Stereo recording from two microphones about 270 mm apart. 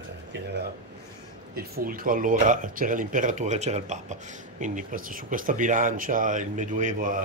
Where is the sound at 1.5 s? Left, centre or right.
Right.